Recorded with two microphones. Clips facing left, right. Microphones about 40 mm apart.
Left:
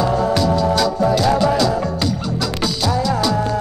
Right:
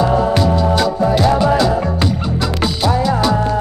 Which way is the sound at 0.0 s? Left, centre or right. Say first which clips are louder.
Right 3 dB; right.